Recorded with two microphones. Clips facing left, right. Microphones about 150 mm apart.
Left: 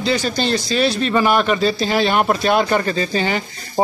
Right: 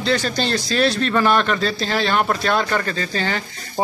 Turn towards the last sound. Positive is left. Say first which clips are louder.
# left 4 dB
turn(degrees=15)  # may be behind; listen again after turning